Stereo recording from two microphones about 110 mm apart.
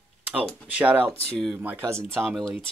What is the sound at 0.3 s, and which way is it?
Speech, 10° right (ahead or behind).